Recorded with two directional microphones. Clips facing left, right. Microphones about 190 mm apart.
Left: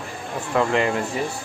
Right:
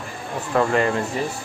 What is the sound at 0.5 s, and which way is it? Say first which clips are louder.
Speech: right 1 dB; 15° left (ahead or behind).